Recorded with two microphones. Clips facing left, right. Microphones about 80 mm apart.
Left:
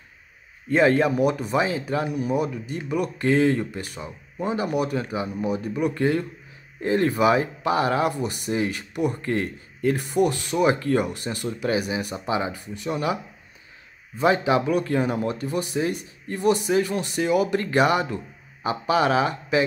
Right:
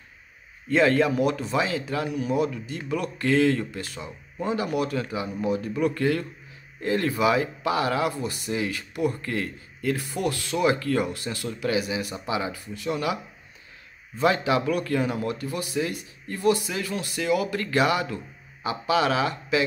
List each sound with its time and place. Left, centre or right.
0.7 s speech: left
2.5 s speech: centre
10.6 s speech: left